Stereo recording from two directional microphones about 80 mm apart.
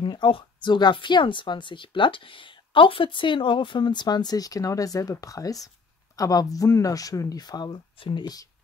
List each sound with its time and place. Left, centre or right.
0.0 s speech: left